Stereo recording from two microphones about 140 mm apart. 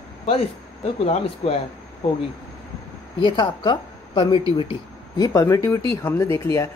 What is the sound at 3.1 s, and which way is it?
A woman's voice, 35° left (ahead or behind).